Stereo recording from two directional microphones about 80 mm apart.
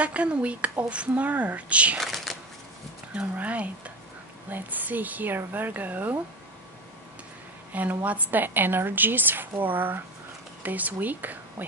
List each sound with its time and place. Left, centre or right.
0.0 s speech: centre
2.0 s a sound: centre
3.2 s a woman's voice: centre
7.7 s a woman's voice: right